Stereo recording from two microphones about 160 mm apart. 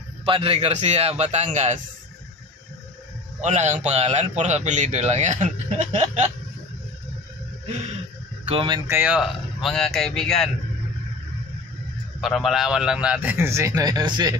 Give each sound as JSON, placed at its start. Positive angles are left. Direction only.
{"t": 0.2, "sound": "a man's voice", "side_deg": -35}
{"t": 3.3, "sound": "a man's voice", "side_deg": -45}
{"t": 8.5, "sound": "speech", "side_deg": -35}
{"t": 8.8, "sound": "speech", "side_deg": -10}
{"t": 12.2, "sound": "a man's voice", "side_deg": 0}